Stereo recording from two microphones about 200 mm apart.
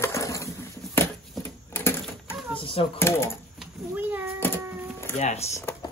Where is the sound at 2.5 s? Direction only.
25° left (ahead or behind).